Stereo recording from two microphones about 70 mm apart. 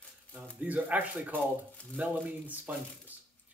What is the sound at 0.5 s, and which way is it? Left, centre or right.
Speech, right.